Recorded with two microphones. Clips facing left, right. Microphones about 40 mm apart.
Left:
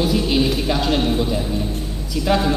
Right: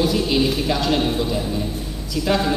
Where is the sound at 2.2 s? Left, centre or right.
Centre.